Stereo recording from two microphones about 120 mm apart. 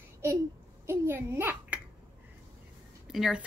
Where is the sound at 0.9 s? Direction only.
20° right (ahead or behind).